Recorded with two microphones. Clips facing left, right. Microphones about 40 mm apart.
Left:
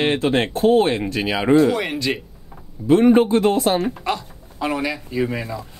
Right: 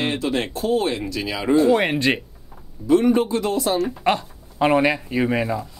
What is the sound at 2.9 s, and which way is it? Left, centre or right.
Speech, left.